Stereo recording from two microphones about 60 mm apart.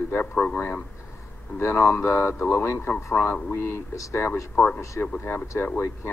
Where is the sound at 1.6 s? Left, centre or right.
Left.